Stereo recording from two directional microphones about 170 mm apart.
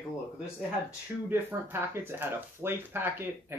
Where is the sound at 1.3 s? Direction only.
15° right (ahead or behind).